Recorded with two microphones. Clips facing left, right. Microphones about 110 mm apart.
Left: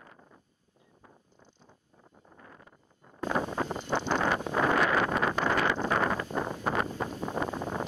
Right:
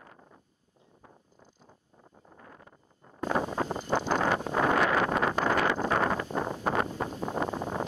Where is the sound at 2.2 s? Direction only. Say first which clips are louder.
Right 1 dB; 35° right (ahead or behind).